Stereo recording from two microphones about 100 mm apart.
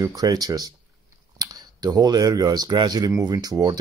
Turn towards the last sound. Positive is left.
turn(degrees=-40)  # may be behind; listen again after turning